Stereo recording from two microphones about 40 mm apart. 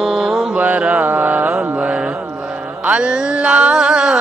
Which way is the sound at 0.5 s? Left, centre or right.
Right.